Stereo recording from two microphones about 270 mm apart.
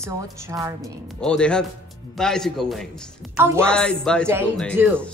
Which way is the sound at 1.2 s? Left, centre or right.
Centre.